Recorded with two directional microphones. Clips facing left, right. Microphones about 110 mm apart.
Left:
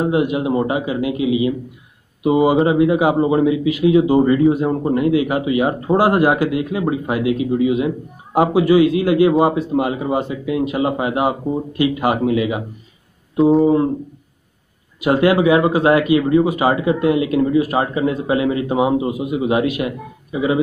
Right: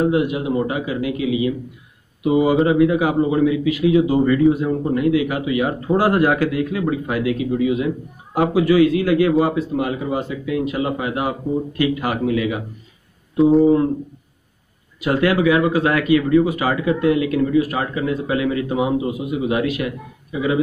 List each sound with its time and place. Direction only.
0.0 s speech: 25° left (ahead or behind)
13.4 s speech: centre (ahead or behind)
15.0 s speech: 25° left (ahead or behind)